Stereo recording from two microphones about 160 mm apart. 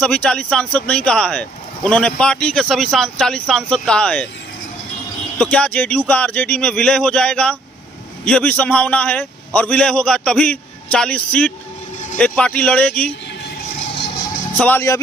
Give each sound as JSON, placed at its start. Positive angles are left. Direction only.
{"t": 0.0, "sound": "speech", "side_deg": 5}
{"t": 5.4, "sound": "a man's voice", "side_deg": 10}
{"t": 13.9, "sound": "music", "side_deg": 90}
{"t": 14.6, "sound": "a man's voice", "side_deg": 15}